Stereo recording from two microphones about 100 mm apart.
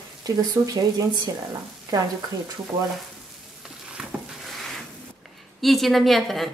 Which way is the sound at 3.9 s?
5° right (ahead or behind).